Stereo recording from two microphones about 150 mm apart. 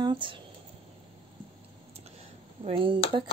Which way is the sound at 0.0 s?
30° right (ahead or behind).